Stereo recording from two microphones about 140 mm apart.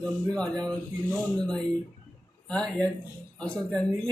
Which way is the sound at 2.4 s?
5° left (ahead or behind).